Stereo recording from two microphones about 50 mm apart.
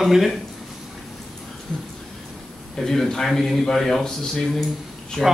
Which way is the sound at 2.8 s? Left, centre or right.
Centre.